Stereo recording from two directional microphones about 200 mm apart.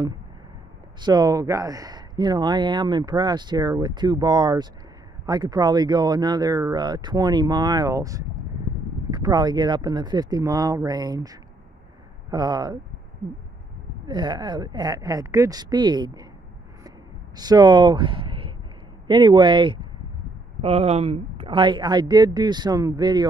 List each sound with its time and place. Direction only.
1.0 s speech: 20° right (ahead or behind)
14.0 s speech: 20° right (ahead or behind)
17.4 s speech: 20° right (ahead or behind)